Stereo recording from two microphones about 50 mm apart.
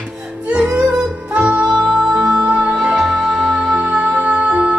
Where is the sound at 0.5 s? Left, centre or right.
Right.